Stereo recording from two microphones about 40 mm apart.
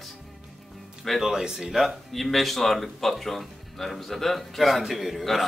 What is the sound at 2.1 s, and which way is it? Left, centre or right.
Speech, centre.